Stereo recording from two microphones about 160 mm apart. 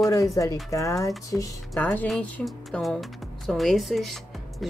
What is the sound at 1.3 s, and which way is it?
Speech, 10° left (ahead or behind).